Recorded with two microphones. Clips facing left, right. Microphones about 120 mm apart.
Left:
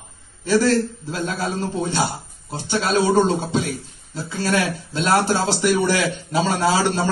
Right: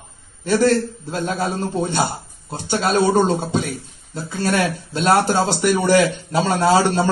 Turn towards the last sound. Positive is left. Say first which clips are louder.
# right 3 dB
turn(degrees=-45)  # may be behind; listen again after turning